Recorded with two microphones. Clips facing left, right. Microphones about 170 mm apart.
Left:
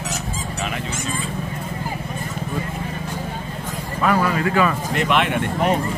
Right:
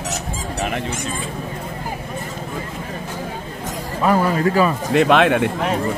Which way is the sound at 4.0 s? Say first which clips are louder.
Right 2 dB; 35° right (ahead or behind).